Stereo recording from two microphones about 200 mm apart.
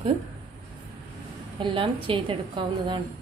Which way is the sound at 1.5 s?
25° right (ahead or behind).